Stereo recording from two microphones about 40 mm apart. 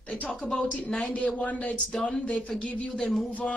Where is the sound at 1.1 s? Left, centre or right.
Left.